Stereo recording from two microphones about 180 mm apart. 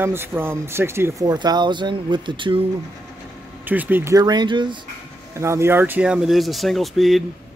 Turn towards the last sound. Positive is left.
turn(degrees=0)  # may be behind; listen again after turning